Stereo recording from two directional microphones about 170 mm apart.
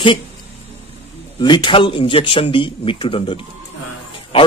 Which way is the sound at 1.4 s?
25° left (ahead or behind).